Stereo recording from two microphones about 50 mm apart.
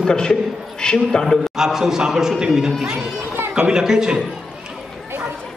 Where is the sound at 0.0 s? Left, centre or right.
Centre.